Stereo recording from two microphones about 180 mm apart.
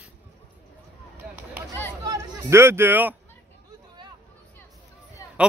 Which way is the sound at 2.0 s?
15° right (ahead or behind).